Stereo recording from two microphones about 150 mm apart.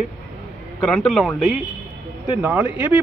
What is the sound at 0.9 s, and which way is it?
Speech, 5° left (ahead or behind).